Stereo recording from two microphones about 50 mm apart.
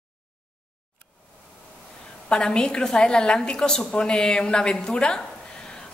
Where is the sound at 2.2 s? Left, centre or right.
Centre.